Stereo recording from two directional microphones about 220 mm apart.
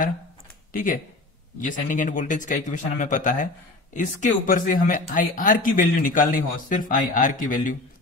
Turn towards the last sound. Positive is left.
turn(degrees=35)  # may be behind; listen again after turning